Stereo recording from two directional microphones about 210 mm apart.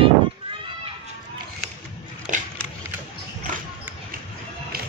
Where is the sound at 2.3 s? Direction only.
40° right (ahead or behind).